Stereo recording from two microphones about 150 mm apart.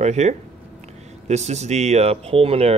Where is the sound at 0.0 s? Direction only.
50° right (ahead or behind).